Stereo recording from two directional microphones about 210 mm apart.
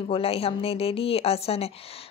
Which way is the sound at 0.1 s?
30° left (ahead or behind).